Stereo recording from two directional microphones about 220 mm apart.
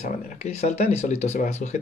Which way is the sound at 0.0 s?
30° left (ahead or behind).